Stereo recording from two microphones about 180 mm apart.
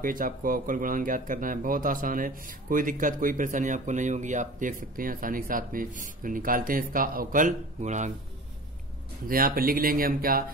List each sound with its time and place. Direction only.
0.0 s speech: 50° right (ahead or behind)
9.3 s speech: 55° right (ahead or behind)